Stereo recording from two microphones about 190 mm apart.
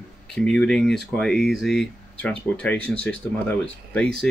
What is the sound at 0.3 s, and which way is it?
Speech, 5° left (ahead or behind).